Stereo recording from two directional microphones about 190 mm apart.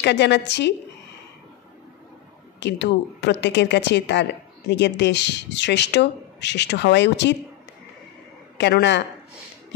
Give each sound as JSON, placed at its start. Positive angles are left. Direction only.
{"t": 0.0, "sound": "a woman's voice", "side_deg": 65}
{"t": 2.6, "sound": "a woman's voice", "side_deg": 65}
{"t": 8.5, "sound": "a woman's voice", "side_deg": 65}